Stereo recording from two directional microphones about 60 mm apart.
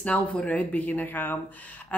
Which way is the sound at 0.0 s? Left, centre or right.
Centre.